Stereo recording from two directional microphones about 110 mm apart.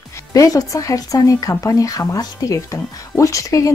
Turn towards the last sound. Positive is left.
turn(degrees=30)  # may be behind; listen again after turning